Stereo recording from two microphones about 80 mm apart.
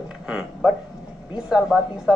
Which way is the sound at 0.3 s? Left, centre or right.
Centre.